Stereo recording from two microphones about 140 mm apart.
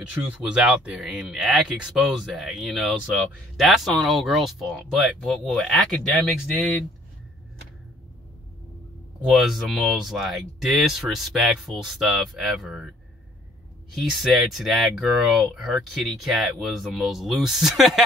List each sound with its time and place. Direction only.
0.0 s speech: 10° right (ahead or behind)
9.3 s speech: centre (ahead or behind)
13.9 s speech: centre (ahead or behind)